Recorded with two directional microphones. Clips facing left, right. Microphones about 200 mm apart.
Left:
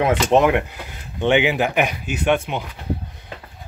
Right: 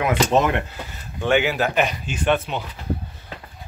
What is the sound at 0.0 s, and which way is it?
Speech, 25° left (ahead or behind).